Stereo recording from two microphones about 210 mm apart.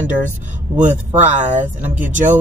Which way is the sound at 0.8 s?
35° right (ahead or behind).